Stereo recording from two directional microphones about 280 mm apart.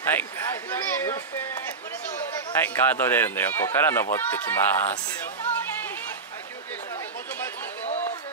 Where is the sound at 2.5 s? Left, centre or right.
Centre.